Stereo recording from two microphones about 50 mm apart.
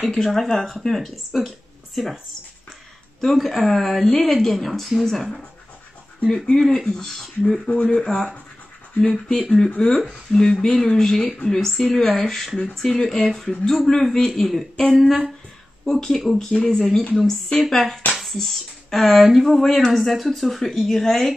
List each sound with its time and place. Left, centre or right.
0.0 s a woman's voice: centre
3.2 s a woman's voice: centre; by 8.1 s left
8.1 s a woman's voice: centre